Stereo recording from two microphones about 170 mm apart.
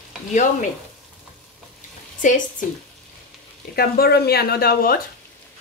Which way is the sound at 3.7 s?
65° left (ahead or behind).